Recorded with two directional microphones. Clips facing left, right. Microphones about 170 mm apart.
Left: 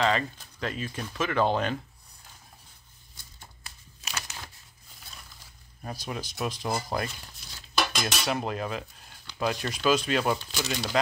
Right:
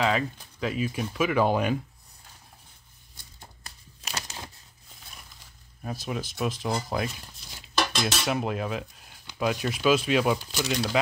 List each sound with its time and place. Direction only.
0.0 s speech: 5° right (ahead or behind)
3.3 s crumpling: 35° right (ahead or behind)
5.9 s speech: centre (ahead or behind)
7.7 s cutlery: 5° left (ahead or behind)
9.4 s speech: 5° right (ahead or behind)